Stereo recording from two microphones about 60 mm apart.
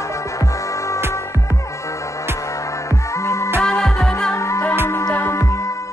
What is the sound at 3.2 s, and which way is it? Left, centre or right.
Music, left.